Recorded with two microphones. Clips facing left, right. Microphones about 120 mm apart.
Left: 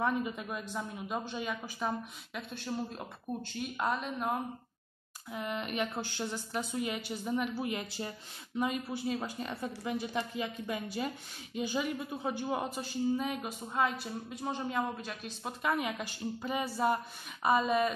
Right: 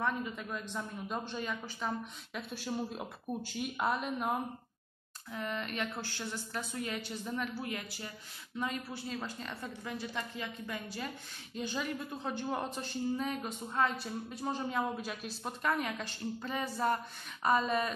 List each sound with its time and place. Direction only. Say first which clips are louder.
0.0 s a woman's voice: left 3 dB; 15° left (ahead or behind)
2.5 s a woman's voice: even; 5° right (ahead or behind)
5.3 s a woman's voice: left 2 dB; 15° left (ahead or behind); by 15.5 s 5° right (ahead or behind)
15.6 s a woman's voice: left 1 dB; 10° left (ahead or behind)